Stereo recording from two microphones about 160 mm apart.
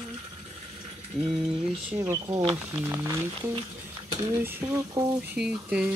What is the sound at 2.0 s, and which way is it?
Speech, 20° right (ahead or behind).